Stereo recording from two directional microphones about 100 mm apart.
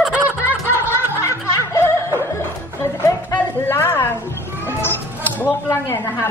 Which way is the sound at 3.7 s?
25° left (ahead or behind).